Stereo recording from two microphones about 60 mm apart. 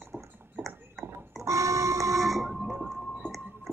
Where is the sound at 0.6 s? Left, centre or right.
Right.